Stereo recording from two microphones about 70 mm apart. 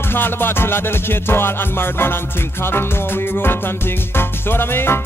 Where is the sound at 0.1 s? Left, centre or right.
Left.